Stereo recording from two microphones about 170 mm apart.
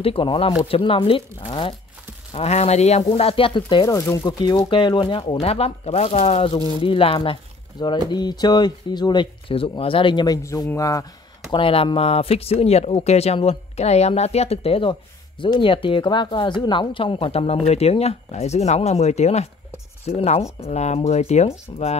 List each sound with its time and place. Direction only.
0.0 s speech: 30° left (ahead or behind)
11.5 s speech: 30° left (ahead or behind)